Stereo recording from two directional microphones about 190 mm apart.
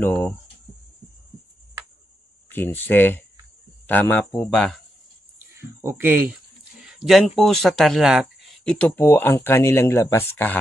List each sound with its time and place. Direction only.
0.0 s speech: 10° left (ahead or behind)
2.5 s speech: 10° left (ahead or behind)
5.8 s speech: 10° right (ahead or behind)
7.3 s speech: centre (ahead or behind)